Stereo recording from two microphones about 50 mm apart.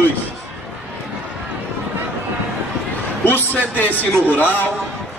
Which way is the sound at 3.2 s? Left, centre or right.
Left.